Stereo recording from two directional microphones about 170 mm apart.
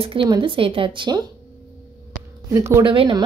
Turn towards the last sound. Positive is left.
turn(degrees=-30)  # may be behind; listen again after turning